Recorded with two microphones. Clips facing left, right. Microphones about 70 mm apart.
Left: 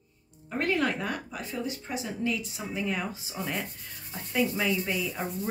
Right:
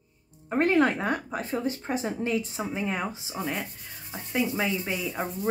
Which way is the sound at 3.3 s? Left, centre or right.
Centre.